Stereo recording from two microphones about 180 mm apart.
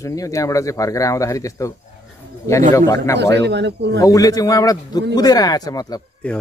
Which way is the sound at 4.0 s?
20° left (ahead or behind).